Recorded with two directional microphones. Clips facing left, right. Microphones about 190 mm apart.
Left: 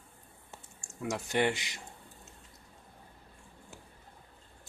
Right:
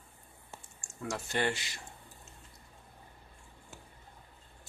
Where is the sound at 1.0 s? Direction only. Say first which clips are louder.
Left 3 dB; 15° left (ahead or behind).